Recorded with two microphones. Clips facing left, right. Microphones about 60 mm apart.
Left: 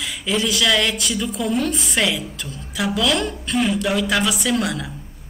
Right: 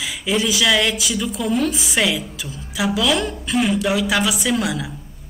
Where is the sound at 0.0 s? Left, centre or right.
Centre.